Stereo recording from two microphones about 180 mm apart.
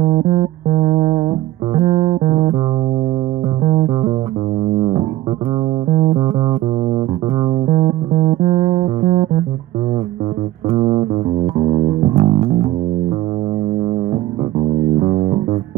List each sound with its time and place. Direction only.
0.0 s music: 35° right (ahead or behind)
3.6 s music: 35° right (ahead or behind)
7.6 s music: 35° right (ahead or behind)
10.8 s music: 25° right (ahead or behind)
15.0 s music: 30° right (ahead or behind)